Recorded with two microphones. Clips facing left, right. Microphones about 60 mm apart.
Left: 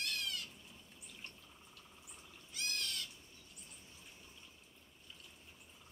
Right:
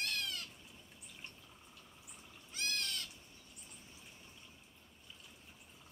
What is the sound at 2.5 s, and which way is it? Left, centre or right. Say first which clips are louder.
Owl: right 2 dB; right.